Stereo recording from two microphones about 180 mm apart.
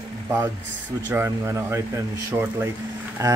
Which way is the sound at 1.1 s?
15° right (ahead or behind).